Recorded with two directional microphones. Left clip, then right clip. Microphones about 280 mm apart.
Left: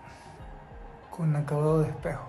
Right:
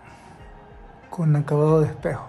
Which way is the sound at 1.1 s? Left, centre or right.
Right.